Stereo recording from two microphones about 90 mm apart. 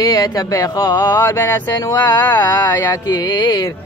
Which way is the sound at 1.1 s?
25° left (ahead or behind).